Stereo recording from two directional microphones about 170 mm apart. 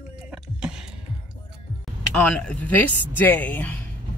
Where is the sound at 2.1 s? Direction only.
5° left (ahead or behind).